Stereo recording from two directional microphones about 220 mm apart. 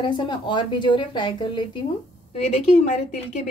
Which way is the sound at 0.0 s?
20° left (ahead or behind).